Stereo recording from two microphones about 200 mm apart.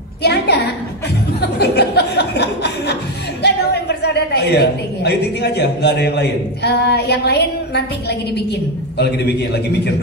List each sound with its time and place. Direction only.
0.2 s a sound: 55° left (ahead or behind)
1.4 s chuckle: 55° left (ahead or behind)
3.4 s a woman's voice: 55° left (ahead or behind)